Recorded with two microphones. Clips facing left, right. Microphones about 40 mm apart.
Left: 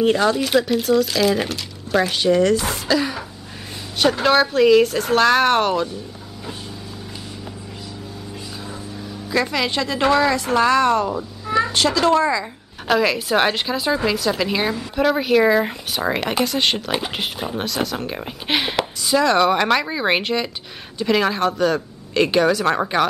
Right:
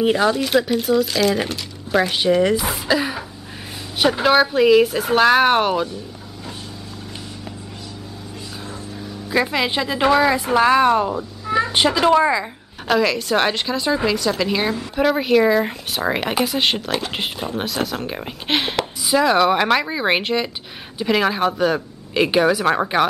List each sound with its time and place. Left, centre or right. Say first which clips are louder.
0.0 s speech: even; centre
9.3 s speech: right 1 dB; centre
11.1 s cat: right 1 dB; centre
11.7 s speech: right 3 dB; centre
12.8 s speech: even; centre